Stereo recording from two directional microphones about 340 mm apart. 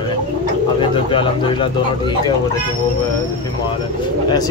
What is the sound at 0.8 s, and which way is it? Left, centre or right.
Speech, centre.